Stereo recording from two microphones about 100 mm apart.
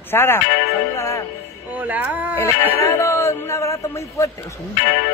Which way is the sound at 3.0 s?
30° left (ahead or behind).